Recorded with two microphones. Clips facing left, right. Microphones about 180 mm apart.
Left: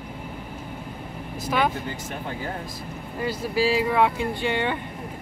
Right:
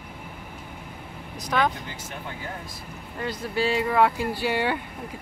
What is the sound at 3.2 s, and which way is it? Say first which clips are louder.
Speech: left 3 dB; 5° left (ahead or behind).